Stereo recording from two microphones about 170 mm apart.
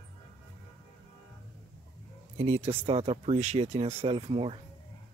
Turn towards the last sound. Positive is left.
turn(degrees=-35)  # may be behind; listen again after turning